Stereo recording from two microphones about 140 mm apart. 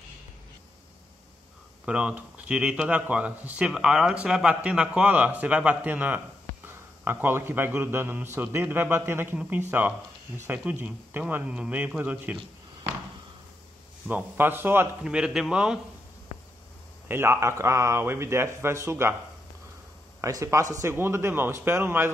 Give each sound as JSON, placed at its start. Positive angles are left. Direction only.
{"t": 1.9, "sound": "a man's voice", "side_deg": -10}
{"t": 14.0, "sound": "a man's voice", "side_deg": -10}
{"t": 16.3, "sound": "a sound", "side_deg": 45}
{"t": 17.1, "sound": "speech", "side_deg": -15}
{"t": 20.2, "sound": "a man's voice", "side_deg": -20}